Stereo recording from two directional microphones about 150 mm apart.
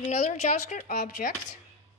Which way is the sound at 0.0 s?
50° left (ahead or behind).